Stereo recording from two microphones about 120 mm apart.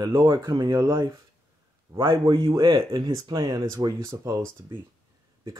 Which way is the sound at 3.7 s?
30° right (ahead or behind).